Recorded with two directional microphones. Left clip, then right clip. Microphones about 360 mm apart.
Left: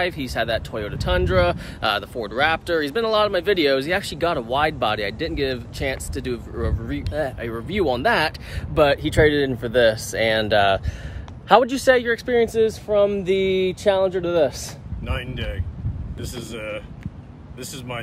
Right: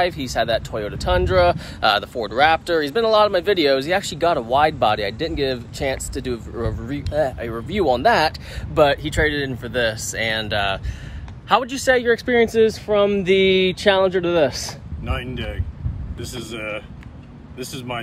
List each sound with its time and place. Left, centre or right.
0.0 s speech: centre; by 11.8 s left
12.3 s speech: centre
15.0 s speech: centre